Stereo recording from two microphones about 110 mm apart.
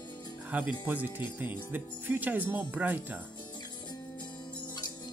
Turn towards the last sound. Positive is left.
turn(degrees=-15)  # may be behind; listen again after turning